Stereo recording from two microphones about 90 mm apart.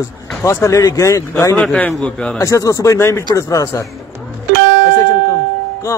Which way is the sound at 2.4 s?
40° left (ahead or behind).